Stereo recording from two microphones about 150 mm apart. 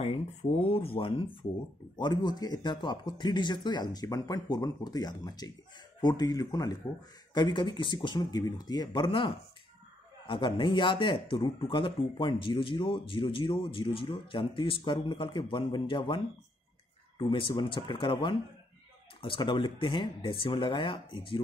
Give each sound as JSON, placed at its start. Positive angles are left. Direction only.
{"t": 0.0, "sound": "speech", "side_deg": 40}
{"t": 17.2, "sound": "speech", "side_deg": 35}